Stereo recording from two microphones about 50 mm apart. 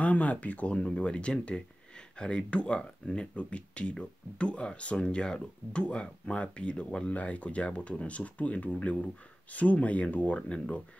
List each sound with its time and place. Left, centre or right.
0.0 s speech: left